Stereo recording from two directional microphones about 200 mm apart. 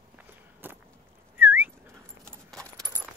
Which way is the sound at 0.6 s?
10° right (ahead or behind).